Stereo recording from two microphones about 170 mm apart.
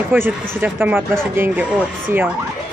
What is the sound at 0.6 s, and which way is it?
Speech, 10° right (ahead or behind).